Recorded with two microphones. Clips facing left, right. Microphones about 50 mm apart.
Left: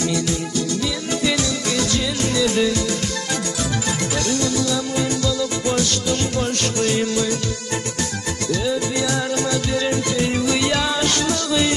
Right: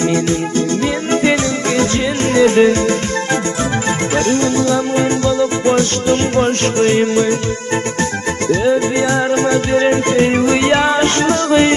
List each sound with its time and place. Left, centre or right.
2.3 s music: right
4.3 s music: right
9.3 s music: right